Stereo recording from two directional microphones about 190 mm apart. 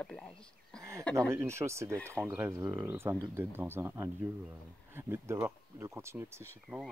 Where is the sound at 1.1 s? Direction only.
15° right (ahead or behind).